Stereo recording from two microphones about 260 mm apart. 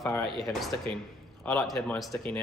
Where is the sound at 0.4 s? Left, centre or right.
Centre.